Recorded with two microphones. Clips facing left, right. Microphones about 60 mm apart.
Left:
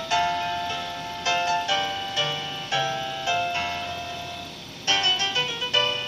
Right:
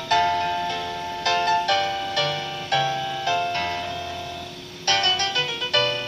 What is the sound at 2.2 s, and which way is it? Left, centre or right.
Music, centre.